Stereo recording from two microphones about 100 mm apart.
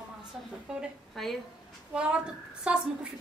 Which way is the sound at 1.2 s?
Centre (ahead or behind).